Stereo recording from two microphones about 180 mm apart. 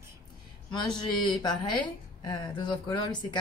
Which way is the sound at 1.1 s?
25° left (ahead or behind).